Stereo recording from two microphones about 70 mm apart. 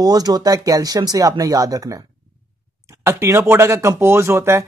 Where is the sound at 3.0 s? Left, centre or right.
Right.